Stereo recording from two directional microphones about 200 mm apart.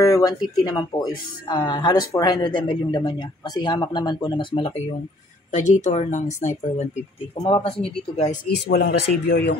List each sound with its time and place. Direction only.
0.0 s speech: 20° left (ahead or behind); by 6.9 s 40° left (ahead or behind)
7.3 s speech: 25° left (ahead or behind)
8.5 s speech: 55° left (ahead or behind)